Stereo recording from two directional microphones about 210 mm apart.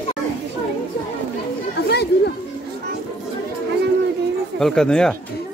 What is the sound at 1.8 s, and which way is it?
Children playing, 50° left (ahead or behind).